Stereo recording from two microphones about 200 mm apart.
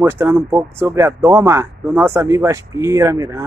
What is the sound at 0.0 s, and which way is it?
Speech, 10° right (ahead or behind).